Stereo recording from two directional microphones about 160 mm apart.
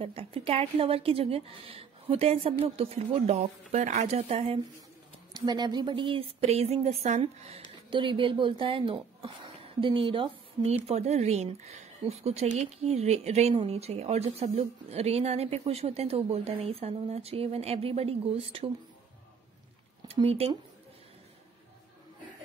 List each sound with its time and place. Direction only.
0.0 s speech: 35° right (ahead or behind)
5.3 s speech: 25° right (ahead or behind); by 7.6 s 40° right (ahead or behind)
7.9 s speech: 30° right (ahead or behind)
20.1 s speech: 40° right (ahead or behind)